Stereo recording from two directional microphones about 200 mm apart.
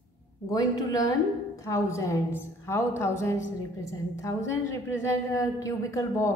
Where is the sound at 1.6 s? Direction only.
15° left (ahead or behind).